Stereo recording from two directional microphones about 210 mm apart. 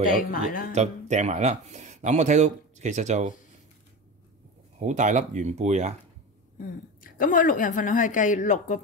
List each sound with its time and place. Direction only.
0.2 s a woman's voice: 40° left (ahead or behind)
0.7 s speech: 35° right (ahead or behind)
4.7 s speech: 35° right (ahead or behind)
6.6 s a woman's voice: 40° left (ahead or behind)